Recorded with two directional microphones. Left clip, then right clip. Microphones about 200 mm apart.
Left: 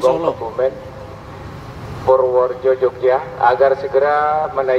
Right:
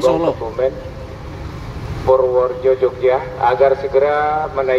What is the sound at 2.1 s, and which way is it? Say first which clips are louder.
Speech: even; 35° left (ahead or behind).